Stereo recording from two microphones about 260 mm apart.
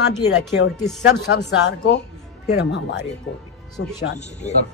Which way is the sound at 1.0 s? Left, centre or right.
Left.